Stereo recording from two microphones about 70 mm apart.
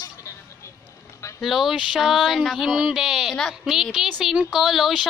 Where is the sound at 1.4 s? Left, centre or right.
Centre.